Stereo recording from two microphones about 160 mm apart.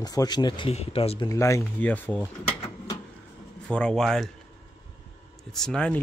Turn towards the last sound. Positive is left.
turn(degrees=5)  # may be behind; listen again after turning